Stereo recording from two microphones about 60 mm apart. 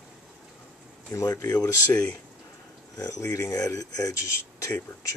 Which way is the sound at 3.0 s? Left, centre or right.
Left.